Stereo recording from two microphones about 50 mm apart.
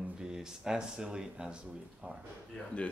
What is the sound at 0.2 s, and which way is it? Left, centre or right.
Speech, centre.